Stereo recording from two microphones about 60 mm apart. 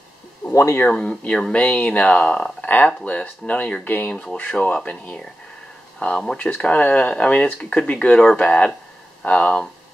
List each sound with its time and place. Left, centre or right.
0.5 s speech: left
0.8 s speech: left
4.1 s speech: centre
6.0 s speech: left